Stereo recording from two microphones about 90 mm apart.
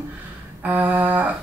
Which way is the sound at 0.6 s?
20° right (ahead or behind).